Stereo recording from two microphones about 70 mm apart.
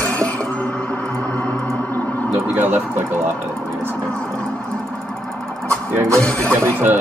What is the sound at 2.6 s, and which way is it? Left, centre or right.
Speech, right.